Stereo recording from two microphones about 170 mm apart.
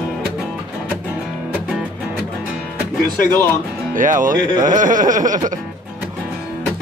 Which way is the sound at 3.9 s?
50° right (ahead or behind).